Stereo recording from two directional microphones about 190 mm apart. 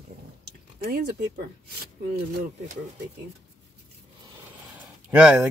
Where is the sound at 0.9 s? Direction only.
60° right (ahead or behind).